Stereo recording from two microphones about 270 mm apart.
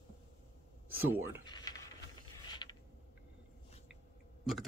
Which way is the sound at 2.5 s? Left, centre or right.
Centre.